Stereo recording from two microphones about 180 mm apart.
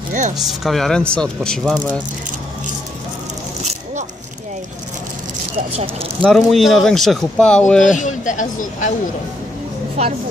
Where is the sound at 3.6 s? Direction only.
40° right (ahead or behind).